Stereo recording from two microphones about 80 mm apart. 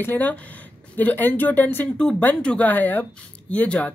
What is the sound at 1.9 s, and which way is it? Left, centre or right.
Speech, centre.